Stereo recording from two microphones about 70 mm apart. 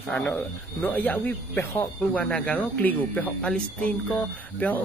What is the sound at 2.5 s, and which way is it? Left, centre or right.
Speech, left.